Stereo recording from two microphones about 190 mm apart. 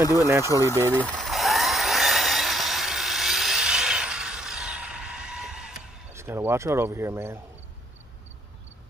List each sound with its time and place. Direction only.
0.0 s speech: 20° left (ahead or behind)
0.9 s a sound: 5° left (ahead or behind)
6.1 s speech: 15° right (ahead or behind)